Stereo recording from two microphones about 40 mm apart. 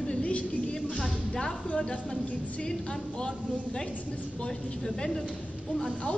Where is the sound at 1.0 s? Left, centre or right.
Centre.